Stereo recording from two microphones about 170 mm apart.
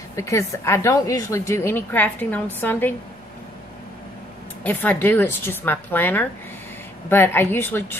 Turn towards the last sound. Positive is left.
turn(degrees=10)  # may be behind; listen again after turning